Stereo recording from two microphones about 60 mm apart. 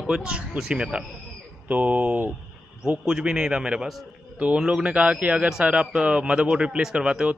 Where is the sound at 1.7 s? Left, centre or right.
Right.